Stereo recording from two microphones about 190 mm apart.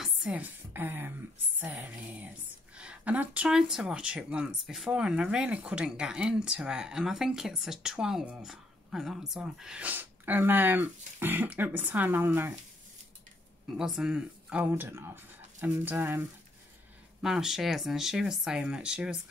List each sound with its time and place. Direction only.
0.0 s a woman's voice: 5° right (ahead or behind)
13.7 s a woman's voice: 5° right (ahead or behind)